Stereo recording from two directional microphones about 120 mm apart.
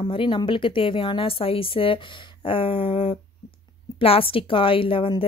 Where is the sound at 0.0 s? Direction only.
45° left (ahead or behind).